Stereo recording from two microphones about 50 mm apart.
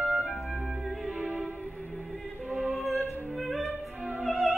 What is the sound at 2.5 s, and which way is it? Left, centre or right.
Music, centre.